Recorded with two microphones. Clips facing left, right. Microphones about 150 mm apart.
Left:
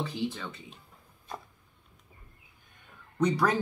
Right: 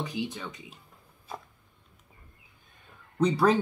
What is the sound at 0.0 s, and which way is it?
Speech, 15° right (ahead or behind).